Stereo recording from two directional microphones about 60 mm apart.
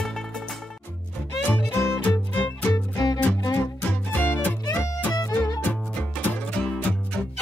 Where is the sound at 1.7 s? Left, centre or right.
Left.